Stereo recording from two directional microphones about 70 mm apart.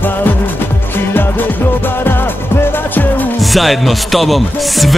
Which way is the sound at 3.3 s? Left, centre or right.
Centre.